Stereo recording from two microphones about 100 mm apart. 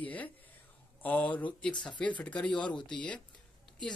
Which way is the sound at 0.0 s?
15° left (ahead or behind).